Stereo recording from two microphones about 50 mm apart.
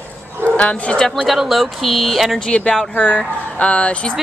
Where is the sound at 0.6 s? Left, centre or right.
Left.